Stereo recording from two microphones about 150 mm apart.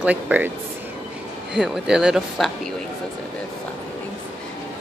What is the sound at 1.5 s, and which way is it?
Speech, 5° right (ahead or behind).